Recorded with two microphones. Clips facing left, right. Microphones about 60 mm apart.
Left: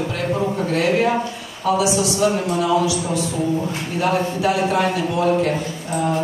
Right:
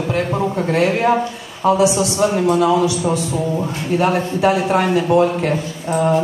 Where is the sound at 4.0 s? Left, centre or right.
Right.